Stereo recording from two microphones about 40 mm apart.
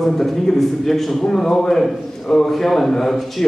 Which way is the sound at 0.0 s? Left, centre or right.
Centre.